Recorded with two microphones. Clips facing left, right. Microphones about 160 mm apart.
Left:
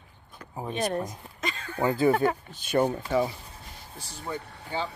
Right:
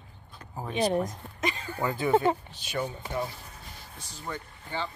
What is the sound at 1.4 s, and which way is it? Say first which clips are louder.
Speech: right 3 dB; 10° right (ahead or behind).